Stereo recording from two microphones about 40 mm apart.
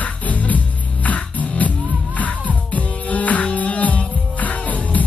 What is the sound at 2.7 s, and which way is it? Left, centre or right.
Music, left.